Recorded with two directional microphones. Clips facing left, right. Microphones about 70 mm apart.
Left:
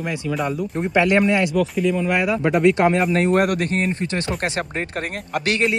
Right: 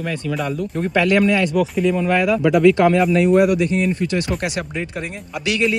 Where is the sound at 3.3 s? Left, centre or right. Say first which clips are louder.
Right 4 dB; left.